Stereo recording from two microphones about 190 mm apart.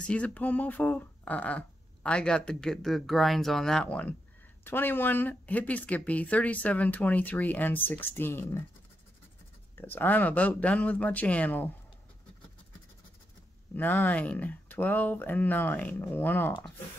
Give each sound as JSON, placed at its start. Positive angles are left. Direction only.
{"t": 0.0, "sound": "speech", "side_deg": 5}
{"t": 9.8, "sound": "speech", "side_deg": 10}
{"t": 13.7, "sound": "speech", "side_deg": 10}